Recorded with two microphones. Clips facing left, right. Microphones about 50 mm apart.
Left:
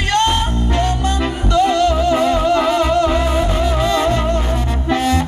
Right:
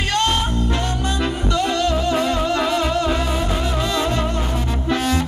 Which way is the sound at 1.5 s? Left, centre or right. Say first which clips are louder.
Left 7 dB; centre.